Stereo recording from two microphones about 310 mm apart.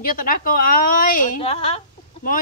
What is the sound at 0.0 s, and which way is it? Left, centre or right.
Speech, left.